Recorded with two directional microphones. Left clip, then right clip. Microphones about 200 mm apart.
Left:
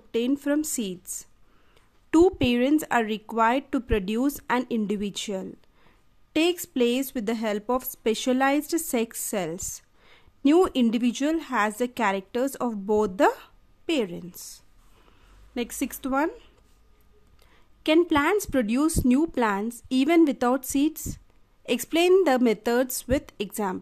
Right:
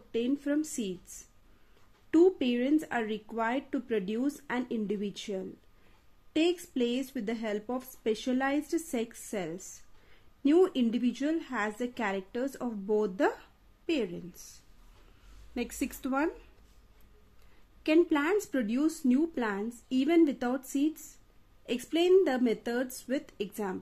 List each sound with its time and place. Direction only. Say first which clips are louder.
0.1 s a woman's voice: left 6 dB; 40° left (ahead or behind)
2.0 s a woman's voice: left 5 dB; 45° left (ahead or behind)
15.5 s speech: left 5 dB; 25° left (ahead or behind)
17.8 s a woman's voice: left 5 dB; 30° left (ahead or behind)